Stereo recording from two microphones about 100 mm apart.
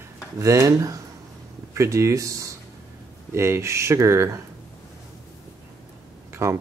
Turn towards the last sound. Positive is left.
turn(degrees=-25)  # may be behind; listen again after turning